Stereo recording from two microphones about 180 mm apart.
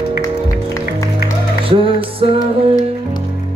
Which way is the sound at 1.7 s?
30° right (ahead or behind).